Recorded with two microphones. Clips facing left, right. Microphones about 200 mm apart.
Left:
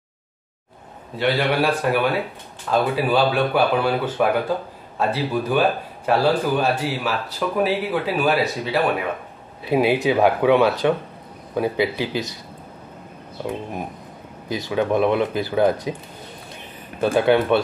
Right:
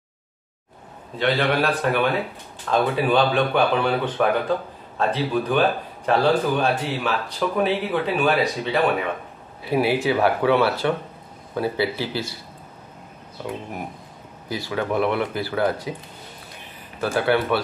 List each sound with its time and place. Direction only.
1.1 s speech: 10° left (ahead or behind)
9.7 s speech: 20° left (ahead or behind)
14.5 s speech: 20° left (ahead or behind)
17.0 s speech: 20° left (ahead or behind)